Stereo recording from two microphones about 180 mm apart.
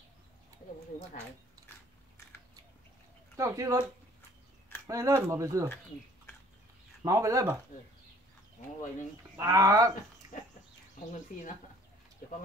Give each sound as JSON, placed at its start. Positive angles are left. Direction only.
{"t": 3.3, "sound": "speech", "side_deg": -15}
{"t": 4.8, "sound": "speech", "side_deg": -15}
{"t": 7.0, "sound": "speech", "side_deg": -15}
{"t": 8.6, "sound": "speech", "side_deg": 40}
{"t": 9.4, "sound": "speech", "side_deg": -20}